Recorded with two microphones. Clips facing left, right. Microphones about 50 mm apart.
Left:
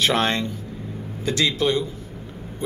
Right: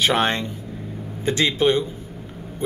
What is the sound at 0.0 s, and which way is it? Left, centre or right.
Speech, centre.